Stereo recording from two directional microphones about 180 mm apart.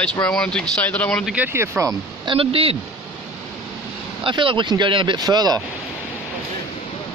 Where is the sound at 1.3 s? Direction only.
10° right (ahead or behind).